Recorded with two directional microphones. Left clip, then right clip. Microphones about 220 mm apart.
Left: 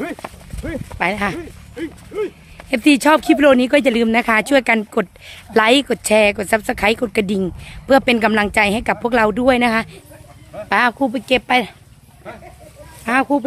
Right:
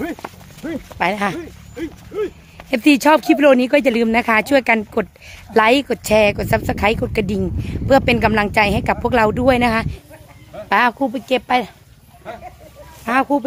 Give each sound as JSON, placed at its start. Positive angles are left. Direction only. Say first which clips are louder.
{"t": 0.6, "sound": "speech", "louder": "even", "side_deg": 15}
{"t": 0.9, "sound": "speech", "louder": "right 1 dB", "side_deg": -5}
{"t": 11.0, "sound": "speech", "louder": "left 2 dB", "side_deg": 20}
{"t": 13.0, "sound": "speech", "louder": "even", "side_deg": 10}